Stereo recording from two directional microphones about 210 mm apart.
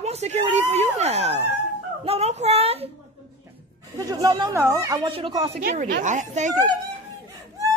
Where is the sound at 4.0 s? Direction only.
15° right (ahead or behind); by 6.6 s 35° right (ahead or behind).